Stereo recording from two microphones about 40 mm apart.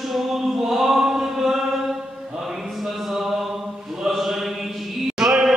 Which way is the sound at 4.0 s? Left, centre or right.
Centre.